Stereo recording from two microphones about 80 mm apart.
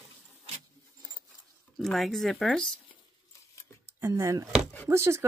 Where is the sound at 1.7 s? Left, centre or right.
Centre.